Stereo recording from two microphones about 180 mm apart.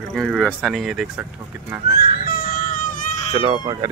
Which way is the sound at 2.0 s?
55° left (ahead or behind).